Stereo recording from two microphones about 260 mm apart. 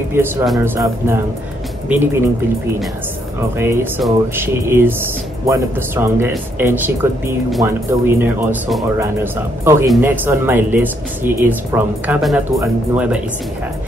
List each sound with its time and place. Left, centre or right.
0.1 s speech: centre
3.5 s speech: centre